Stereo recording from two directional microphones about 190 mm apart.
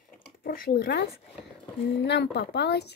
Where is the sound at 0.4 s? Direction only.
50° left (ahead or behind).